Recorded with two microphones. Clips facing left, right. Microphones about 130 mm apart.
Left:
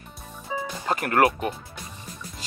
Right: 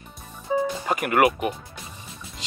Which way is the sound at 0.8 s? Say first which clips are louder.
Left 1 dB; 10° right (ahead or behind).